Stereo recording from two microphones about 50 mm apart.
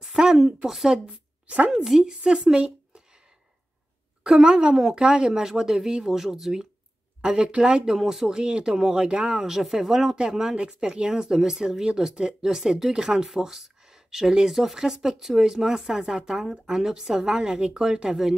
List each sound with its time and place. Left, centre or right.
0.4 s speech: centre
0.9 s a sound: centre
1.9 s speech: centre
4.2 s speech: centre